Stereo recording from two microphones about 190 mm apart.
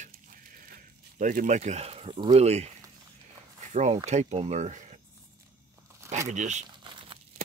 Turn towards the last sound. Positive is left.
turn(degrees=-25)  # may be behind; listen again after turning